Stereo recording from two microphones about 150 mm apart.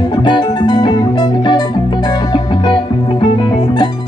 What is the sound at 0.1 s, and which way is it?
Music, 30° left (ahead or behind).